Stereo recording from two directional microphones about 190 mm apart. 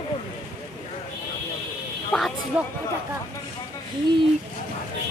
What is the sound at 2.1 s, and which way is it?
Speech, 5° left (ahead or behind).